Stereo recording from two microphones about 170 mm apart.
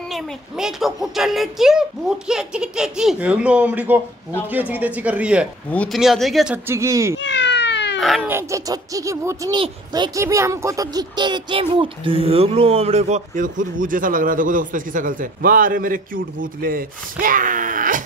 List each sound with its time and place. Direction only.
0.1 s speech: centre (ahead or behind)
5.7 s speech: 5° left (ahead or behind)
6.7 s speech: 15° right (ahead or behind)
7.2 s cat: 90° left
8.0 s speech: centre (ahead or behind)
8.3 s speech: 15° right (ahead or behind); by 18.0 s 50° right (ahead or behind)